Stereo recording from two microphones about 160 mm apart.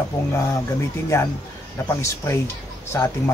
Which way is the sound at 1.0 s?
20° left (ahead or behind).